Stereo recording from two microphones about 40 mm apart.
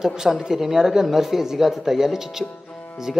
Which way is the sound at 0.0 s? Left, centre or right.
Centre.